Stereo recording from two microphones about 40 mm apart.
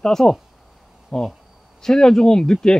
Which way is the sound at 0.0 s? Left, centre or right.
Centre.